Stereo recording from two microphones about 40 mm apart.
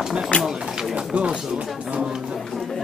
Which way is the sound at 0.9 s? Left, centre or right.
Right.